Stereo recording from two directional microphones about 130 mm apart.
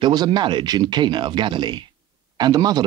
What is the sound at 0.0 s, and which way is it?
Speech, 30° right (ahead or behind).